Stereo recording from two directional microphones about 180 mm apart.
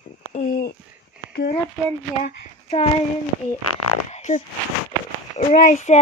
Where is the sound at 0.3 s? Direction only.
45° left (ahead or behind).